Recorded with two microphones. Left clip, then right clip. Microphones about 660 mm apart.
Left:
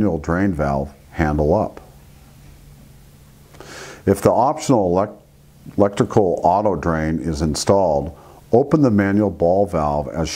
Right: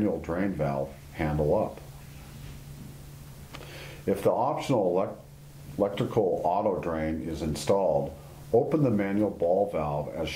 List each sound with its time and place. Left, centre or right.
0.0 s speech: left
4.0 s speech: left